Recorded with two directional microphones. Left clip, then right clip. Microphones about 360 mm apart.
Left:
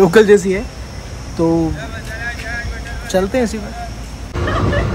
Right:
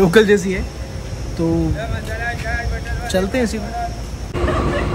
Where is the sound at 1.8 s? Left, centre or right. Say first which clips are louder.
Right 1 dB; right.